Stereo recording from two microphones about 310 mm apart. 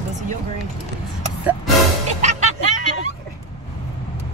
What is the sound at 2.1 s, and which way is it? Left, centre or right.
Music, right.